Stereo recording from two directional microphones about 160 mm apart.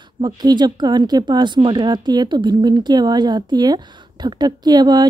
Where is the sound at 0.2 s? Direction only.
25° right (ahead or behind).